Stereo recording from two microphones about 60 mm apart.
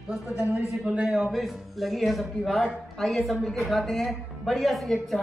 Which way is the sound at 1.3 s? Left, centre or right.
Centre.